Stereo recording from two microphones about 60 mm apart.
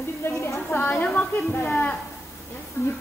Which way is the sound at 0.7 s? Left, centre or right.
Left.